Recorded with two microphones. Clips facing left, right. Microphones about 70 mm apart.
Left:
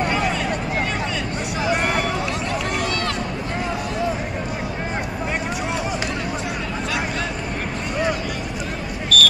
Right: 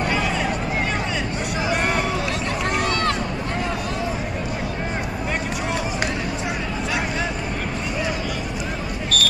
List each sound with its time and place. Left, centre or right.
2.6 s run: right
9.1 s basketball bounce: right